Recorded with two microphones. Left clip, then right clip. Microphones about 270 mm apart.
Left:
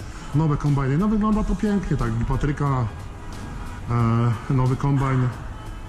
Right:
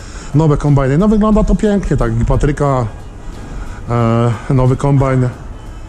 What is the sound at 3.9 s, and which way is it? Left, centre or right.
Speech, centre.